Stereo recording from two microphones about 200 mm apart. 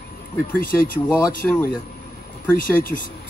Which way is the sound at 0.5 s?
45° left (ahead or behind).